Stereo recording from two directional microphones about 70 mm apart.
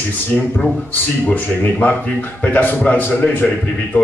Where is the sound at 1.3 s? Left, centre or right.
Left.